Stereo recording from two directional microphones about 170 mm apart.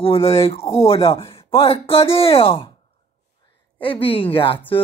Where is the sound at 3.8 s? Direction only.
30° left (ahead or behind).